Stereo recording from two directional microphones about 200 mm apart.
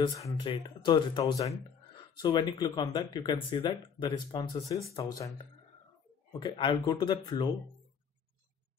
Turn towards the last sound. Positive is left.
turn(degrees=20)  # may be behind; listen again after turning